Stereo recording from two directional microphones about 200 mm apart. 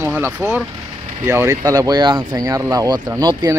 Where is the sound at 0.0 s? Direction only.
10° right (ahead or behind).